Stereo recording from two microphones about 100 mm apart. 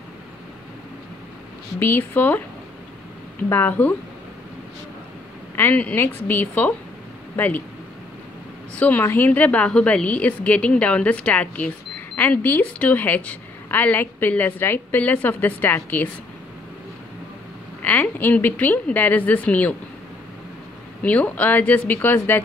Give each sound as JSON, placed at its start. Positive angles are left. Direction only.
{"t": 1.8, "sound": "a woman's voice", "side_deg": 20}
{"t": 3.4, "sound": "a woman's voice", "side_deg": 20}
{"t": 5.6, "sound": "a woman's voice", "side_deg": 15}
{"t": 8.7, "sound": "a woman's voice", "side_deg": 15}
{"t": 17.8, "sound": "a woman's voice", "side_deg": 20}
{"t": 21.0, "sound": "a woman's voice", "side_deg": 15}